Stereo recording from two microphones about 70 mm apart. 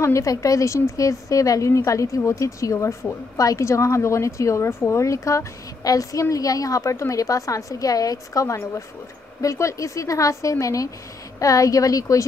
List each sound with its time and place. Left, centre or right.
0.0 s a woman's voice: left